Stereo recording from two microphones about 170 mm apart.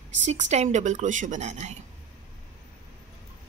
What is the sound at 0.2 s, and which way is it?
Speech, 40° right (ahead or behind).